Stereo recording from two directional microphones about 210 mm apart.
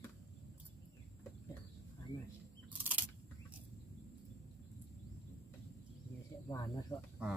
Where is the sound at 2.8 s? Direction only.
10° right (ahead or behind).